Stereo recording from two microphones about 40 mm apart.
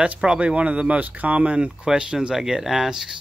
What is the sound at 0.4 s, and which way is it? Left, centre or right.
Speech, right.